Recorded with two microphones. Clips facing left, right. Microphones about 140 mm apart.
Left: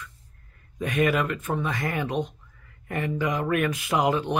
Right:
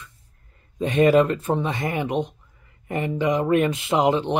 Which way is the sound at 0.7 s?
25° right (ahead or behind).